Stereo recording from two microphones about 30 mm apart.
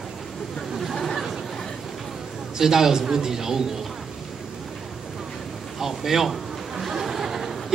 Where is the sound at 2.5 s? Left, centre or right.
Centre.